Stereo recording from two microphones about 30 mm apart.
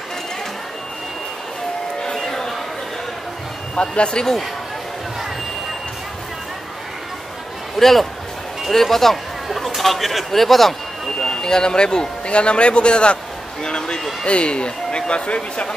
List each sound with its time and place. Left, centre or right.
2.0 s a sound: centre
3.9 s a man's voice: left
7.8 s a man's voice: centre
11.4 s a man's voice: left
14.2 s a man's voice: left